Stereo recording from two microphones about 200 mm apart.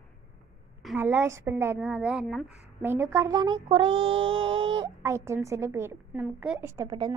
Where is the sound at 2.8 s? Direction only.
10° right (ahead or behind).